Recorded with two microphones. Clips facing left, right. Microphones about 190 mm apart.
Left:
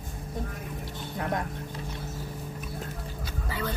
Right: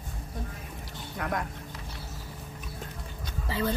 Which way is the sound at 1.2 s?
25° left (ahead or behind).